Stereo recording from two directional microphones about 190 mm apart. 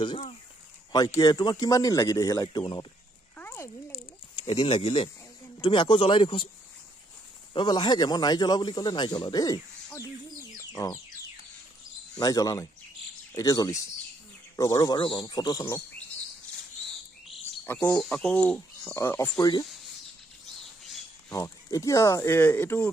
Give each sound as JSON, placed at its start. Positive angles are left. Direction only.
{"t": 0.0, "sound": "speech", "side_deg": 30}
{"t": 0.9, "sound": "speech", "side_deg": 20}
{"t": 3.3, "sound": "a sound", "side_deg": 10}
{"t": 4.5, "sound": "speech", "side_deg": 30}
{"t": 7.5, "sound": "speech", "side_deg": 25}
{"t": 10.6, "sound": "a sound", "side_deg": 15}
{"t": 12.2, "sound": "speech", "side_deg": 20}
{"t": 17.6, "sound": "speech", "side_deg": 10}
{"t": 21.3, "sound": "speech", "side_deg": 15}